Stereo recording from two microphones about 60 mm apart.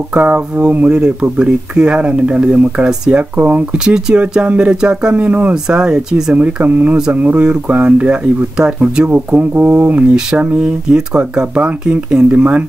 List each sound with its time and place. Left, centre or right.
0.1 s speech: right
3.7 s speech: centre
5.5 s speech: centre
6.3 s speech: right